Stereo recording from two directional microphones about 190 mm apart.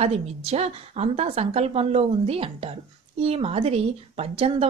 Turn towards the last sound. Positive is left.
turn(degrees=-30)  # may be behind; listen again after turning